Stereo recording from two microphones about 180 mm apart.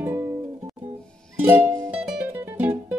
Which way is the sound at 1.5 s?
10° right (ahead or behind).